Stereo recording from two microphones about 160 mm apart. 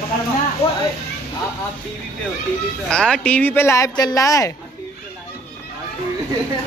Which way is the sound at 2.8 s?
5° left (ahead or behind).